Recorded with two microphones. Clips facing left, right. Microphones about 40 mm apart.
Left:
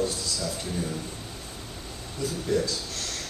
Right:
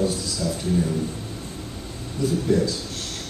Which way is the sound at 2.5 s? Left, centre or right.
Right.